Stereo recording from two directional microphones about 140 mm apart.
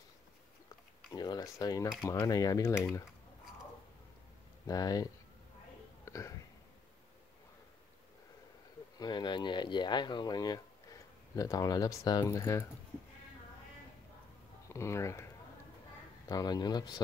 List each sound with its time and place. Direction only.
1.1 s speech: 30° left (ahead or behind)
4.6 s speech: 25° left (ahead or behind)
6.0 s a sound: 20° left (ahead or behind)
8.9 s speech: 30° left (ahead or behind)
14.7 s speech: 20° left (ahead or behind)
16.3 s speech: 30° left (ahead or behind)